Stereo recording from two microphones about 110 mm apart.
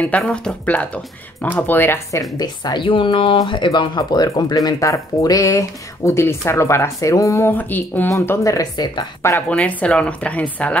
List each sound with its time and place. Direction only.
0.0 s speech: 10° left (ahead or behind)
2.3 s speech: 40° left (ahead or behind); by 8.1 s 15° left (ahead or behind)
8.1 s speech: 30° left (ahead or behind)
9.5 s speech: 15° left (ahead or behind)